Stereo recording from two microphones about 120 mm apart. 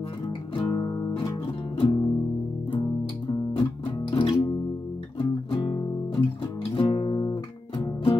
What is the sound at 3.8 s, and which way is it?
Music, 45° left (ahead or behind).